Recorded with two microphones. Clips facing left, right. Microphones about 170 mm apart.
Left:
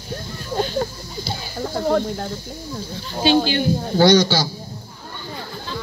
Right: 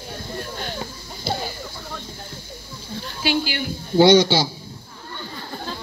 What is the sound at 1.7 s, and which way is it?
Snake, 75° left (ahead or behind).